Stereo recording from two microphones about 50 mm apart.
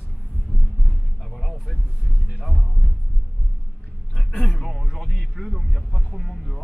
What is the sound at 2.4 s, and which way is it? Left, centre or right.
Music, centre.